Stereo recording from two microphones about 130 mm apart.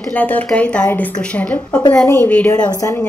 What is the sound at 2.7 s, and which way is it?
Speech, 25° left (ahead or behind).